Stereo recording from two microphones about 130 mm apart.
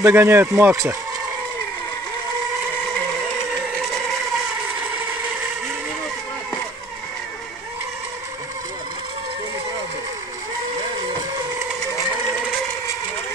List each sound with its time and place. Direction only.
0.0 s speech: 15° right (ahead or behind)